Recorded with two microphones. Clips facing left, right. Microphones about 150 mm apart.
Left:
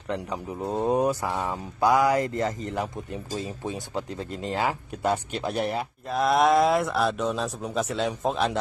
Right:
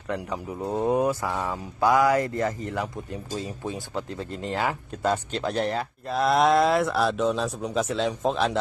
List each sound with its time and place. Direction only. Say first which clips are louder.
0.1 s speech: even; 20° left (ahead or behind)
6.0 s speech: even; centre (ahead or behind)